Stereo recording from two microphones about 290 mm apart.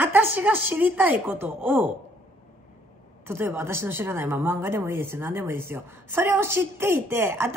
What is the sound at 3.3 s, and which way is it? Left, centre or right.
A woman's voice, centre.